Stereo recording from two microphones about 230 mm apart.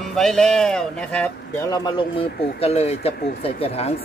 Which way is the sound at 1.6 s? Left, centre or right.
Centre.